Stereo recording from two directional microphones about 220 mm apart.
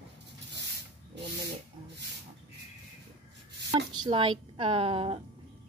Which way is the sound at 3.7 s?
20° right (ahead or behind).